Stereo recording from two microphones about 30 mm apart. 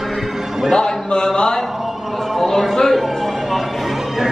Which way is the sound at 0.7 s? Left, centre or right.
Left.